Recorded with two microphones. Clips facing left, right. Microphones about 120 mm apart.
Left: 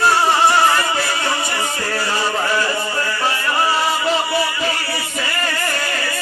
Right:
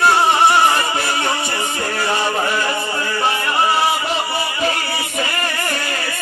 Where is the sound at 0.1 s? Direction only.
20° right (ahead or behind).